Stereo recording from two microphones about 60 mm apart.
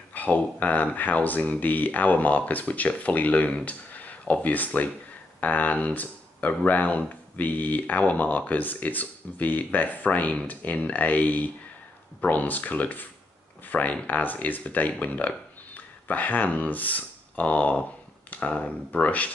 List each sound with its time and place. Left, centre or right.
0.1 s speech: left